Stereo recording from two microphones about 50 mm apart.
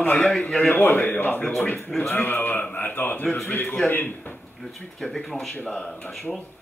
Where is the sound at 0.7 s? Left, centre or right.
Left.